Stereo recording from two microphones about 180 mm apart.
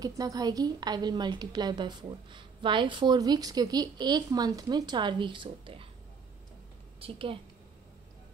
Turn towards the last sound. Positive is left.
turn(degrees=-30)  # may be behind; listen again after turning